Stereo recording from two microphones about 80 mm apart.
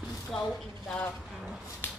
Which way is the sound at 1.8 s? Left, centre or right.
Left.